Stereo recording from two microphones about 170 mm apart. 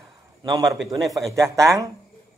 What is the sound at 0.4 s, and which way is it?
A man's voice, 25° right (ahead or behind).